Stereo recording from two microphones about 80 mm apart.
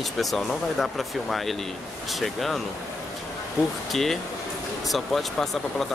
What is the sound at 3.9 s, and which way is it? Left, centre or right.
Speech, centre.